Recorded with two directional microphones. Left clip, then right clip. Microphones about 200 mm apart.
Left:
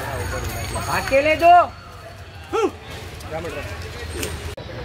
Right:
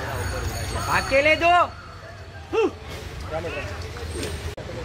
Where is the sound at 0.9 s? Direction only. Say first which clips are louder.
Left 1 dB; 40° left (ahead or behind).